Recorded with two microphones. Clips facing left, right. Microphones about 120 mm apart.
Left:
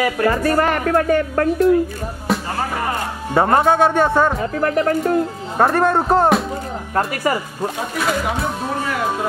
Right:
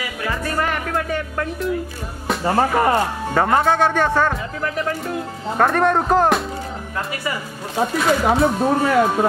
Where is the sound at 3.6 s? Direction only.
15° left (ahead or behind).